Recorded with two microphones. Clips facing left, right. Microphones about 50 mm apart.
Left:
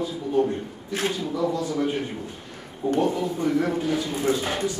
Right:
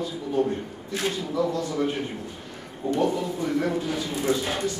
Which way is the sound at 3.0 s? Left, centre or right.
Centre.